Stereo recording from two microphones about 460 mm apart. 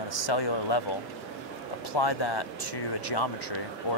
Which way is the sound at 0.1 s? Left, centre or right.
Left.